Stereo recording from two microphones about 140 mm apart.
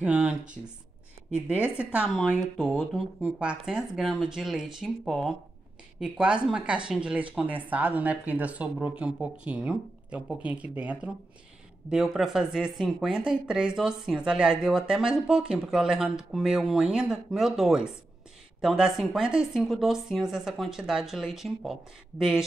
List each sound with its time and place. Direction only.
0.0 s speech: 10° right (ahead or behind)